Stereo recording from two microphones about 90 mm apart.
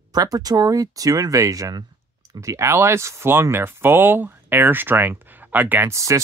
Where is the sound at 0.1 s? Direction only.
45° right (ahead or behind); by 5.9 s 20° right (ahead or behind).